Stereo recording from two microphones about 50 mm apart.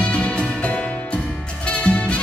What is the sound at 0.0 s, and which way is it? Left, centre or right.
Music, left.